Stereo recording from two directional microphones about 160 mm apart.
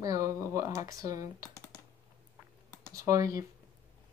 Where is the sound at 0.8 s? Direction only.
20° right (ahead or behind).